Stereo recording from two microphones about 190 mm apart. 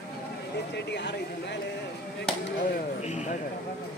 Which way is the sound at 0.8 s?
65° left (ahead or behind).